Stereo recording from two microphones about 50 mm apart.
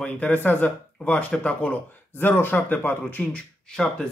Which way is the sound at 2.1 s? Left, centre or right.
Left.